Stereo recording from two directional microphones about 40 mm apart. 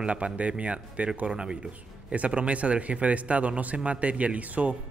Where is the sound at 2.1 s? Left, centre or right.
Right.